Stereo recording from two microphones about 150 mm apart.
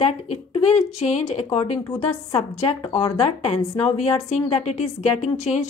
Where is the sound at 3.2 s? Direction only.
45° left (ahead or behind).